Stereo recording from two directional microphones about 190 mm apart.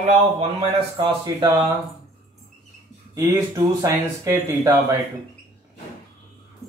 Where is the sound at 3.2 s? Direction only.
15° right (ahead or behind).